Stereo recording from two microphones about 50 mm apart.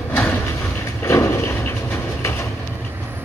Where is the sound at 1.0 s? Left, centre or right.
Left.